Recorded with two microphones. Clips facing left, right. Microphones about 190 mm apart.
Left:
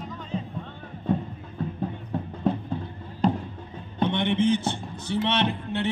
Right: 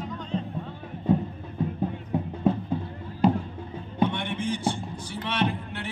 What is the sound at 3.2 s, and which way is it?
Music, 5° right (ahead or behind).